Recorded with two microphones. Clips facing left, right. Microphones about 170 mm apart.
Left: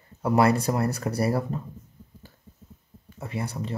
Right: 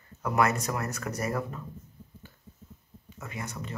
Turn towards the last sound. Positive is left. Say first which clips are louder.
# left 6 dB
turn(degrees=30)  # may be behind; listen again after turning